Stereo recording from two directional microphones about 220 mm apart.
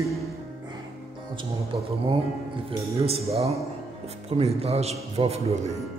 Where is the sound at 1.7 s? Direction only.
20° right (ahead or behind).